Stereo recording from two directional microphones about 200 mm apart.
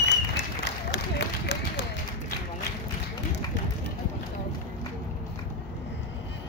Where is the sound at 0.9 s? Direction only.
55° left (ahead or behind).